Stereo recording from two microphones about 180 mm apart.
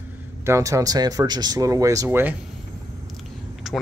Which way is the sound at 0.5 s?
15° right (ahead or behind).